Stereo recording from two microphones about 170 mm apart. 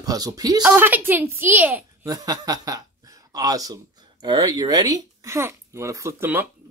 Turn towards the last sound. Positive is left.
turn(degrees=-10)  # may be behind; listen again after turning